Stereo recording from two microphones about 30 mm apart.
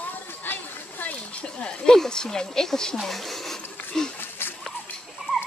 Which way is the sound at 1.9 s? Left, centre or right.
Centre.